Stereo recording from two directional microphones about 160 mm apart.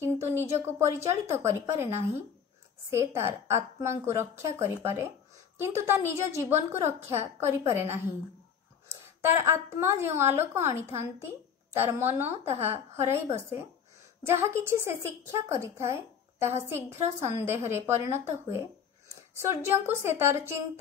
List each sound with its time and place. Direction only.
0.0 s a woman's voice: 15° right (ahead or behind)